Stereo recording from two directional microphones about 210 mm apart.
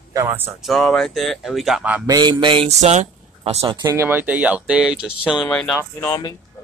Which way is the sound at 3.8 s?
15° right (ahead or behind).